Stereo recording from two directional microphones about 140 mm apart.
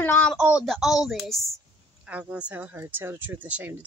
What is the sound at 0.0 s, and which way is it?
Speech, 15° left (ahead or behind).